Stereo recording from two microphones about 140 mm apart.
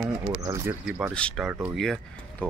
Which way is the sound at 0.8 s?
10° right (ahead or behind).